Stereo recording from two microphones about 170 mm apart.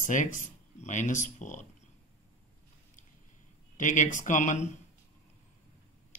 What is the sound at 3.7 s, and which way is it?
Speech, 45° left (ahead or behind).